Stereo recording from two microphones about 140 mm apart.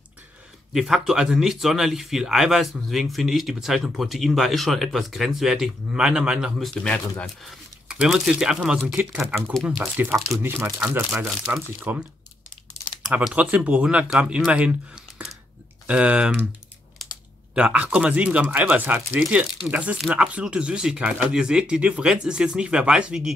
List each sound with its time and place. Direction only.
0.7 s speech: 5° right (ahead or behind)
10.4 s speech: 20° right (ahead or behind)
13.1 s speech: 10° right (ahead or behind)
17.6 s speech: 10° right (ahead or behind)